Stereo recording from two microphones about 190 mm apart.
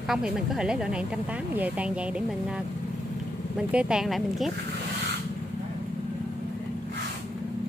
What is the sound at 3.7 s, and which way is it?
Speech, 5° right (ahead or behind).